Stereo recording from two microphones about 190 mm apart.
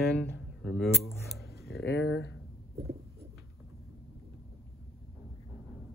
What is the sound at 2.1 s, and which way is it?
Speech, 75° left (ahead or behind).